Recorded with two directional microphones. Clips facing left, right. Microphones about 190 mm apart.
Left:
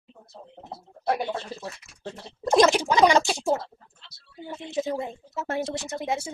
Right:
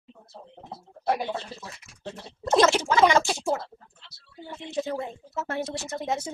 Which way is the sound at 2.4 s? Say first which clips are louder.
Left 2 dB; 15° left (ahead or behind).